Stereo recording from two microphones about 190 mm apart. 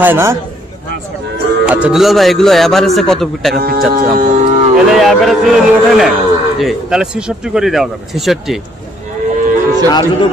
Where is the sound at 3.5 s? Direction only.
55° right (ahead or behind).